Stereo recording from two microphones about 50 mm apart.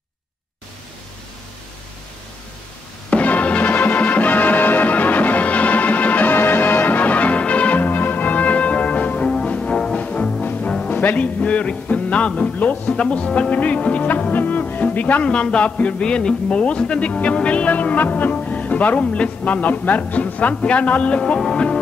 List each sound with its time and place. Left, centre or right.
3.1 s music: left
6.3 s music: left
7.8 s music: left; by 12.5 s centre
12.5 s speech: left
14.3 s music: left
15.2 s speech: centre